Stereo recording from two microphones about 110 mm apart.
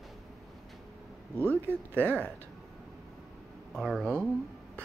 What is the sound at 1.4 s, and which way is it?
Speech, 20° right (ahead or behind).